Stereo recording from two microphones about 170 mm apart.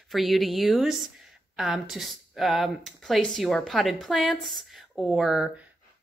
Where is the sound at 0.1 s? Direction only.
Centre (ahead or behind).